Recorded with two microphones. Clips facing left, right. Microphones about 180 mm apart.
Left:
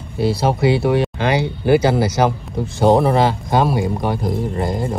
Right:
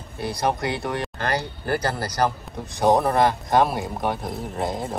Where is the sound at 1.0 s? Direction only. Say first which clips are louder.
Left 8 dB; 70° left (ahead or behind).